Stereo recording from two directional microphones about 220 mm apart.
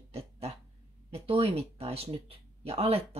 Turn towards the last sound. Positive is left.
turn(degrees=-25)  # may be behind; listen again after turning